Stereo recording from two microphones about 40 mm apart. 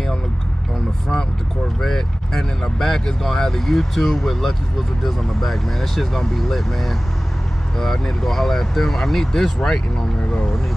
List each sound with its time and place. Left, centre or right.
1.8 s speech: centre
10.2 s speech: left